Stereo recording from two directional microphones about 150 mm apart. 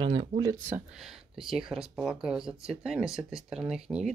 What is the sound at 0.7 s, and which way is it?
Speech, 5° right (ahead or behind).